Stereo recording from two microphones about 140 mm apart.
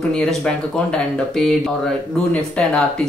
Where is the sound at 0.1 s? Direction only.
5° left (ahead or behind).